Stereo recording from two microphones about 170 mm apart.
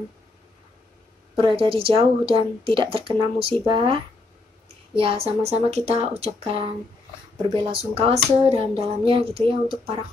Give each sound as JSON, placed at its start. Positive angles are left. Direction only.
{"t": 1.3, "sound": "speech", "side_deg": -30}